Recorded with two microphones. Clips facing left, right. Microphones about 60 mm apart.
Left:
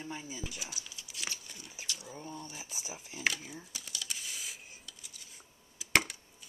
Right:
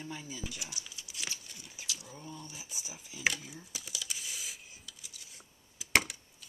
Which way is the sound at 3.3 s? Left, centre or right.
Left.